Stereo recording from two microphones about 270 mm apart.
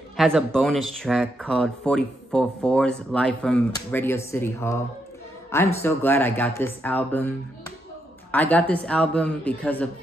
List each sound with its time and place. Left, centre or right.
0.2 s a woman's voice: centre